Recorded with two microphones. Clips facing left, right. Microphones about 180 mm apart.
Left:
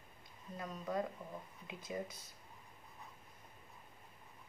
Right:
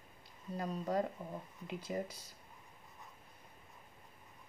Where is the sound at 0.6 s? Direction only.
35° right (ahead or behind).